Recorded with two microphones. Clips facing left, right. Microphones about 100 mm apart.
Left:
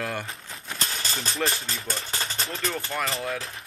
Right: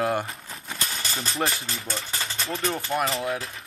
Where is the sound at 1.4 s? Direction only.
30° right (ahead or behind).